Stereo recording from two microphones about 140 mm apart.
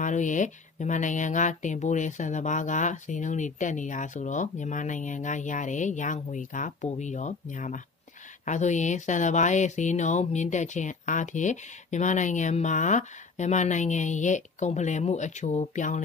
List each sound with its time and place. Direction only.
0.0 s speech: 65° left (ahead or behind)